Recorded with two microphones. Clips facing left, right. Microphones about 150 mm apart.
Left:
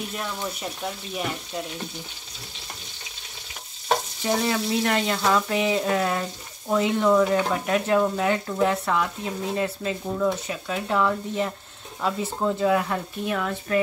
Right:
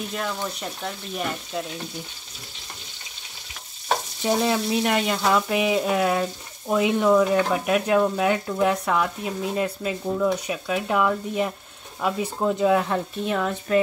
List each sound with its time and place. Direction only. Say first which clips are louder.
0.2 s speech: right 2 dB; 5° left (ahead or behind)
4.2 s speech: right 6 dB; 20° right (ahead or behind)